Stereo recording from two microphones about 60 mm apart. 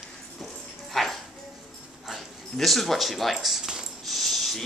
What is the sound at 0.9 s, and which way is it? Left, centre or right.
Dog, centre.